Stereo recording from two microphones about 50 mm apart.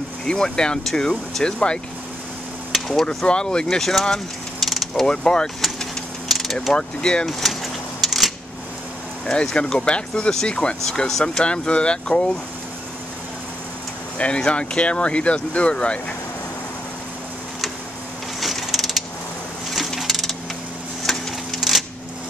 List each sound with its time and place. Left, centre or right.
0.2 s speech: centre
2.9 s speech: centre
3.7 s mechanisms: centre
5.0 s speech: centre
6.3 s mechanisms: centre
6.7 s speech: centre
7.2 s a sound: centre
9.2 s speech: centre
11.4 s speech: left
14.1 s speech: left
18.4 s mechanisms: centre
20.0 s a sound: centre